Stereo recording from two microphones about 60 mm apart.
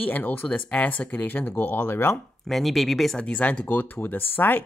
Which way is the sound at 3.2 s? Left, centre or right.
Left.